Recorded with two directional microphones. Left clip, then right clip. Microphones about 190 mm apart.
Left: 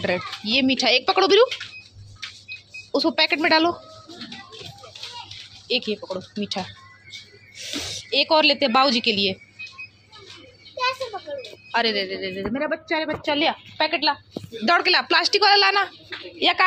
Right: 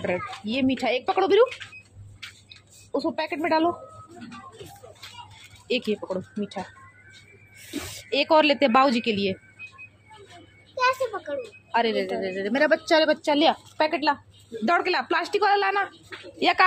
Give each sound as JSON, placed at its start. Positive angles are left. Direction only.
{"t": 0.0, "sound": "a child's voice", "side_deg": -5}
{"t": 2.9, "sound": "speech", "side_deg": 10}
{"t": 5.7, "sound": "a woman's voice", "side_deg": -20}
{"t": 8.1, "sound": "a woman's voice", "side_deg": -20}
{"t": 11.3, "sound": "a sound", "side_deg": -45}
{"t": 11.7, "sound": "a woman's voice", "side_deg": -10}
{"t": 14.6, "sound": "a child's voice", "side_deg": -5}
{"t": 16.3, "sound": "a woman's voice", "side_deg": -20}